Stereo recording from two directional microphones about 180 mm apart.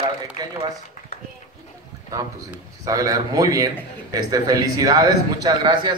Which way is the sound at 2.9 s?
20° right (ahead or behind).